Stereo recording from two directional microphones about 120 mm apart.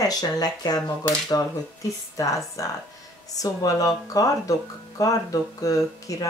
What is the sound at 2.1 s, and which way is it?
Speech, 30° left (ahead or behind).